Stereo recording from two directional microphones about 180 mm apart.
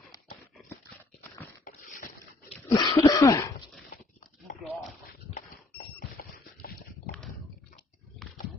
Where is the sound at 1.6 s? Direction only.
50° left (ahead or behind).